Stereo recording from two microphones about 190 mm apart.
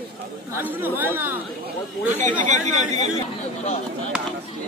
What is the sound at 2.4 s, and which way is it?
Speech, 40° right (ahead or behind).